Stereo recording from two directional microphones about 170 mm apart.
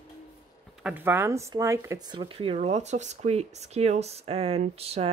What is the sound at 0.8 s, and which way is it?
Speech, 10° right (ahead or behind).